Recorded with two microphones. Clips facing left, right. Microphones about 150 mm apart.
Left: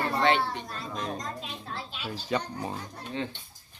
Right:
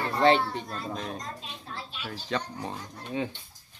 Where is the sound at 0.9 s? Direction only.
Centre (ahead or behind).